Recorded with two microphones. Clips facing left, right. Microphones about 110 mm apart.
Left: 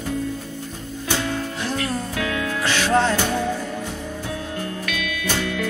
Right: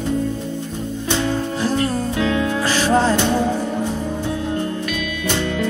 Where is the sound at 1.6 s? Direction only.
35° right (ahead or behind).